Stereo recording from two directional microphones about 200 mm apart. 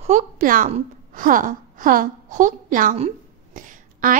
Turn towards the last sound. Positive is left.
turn(degrees=-40)  # may be behind; listen again after turning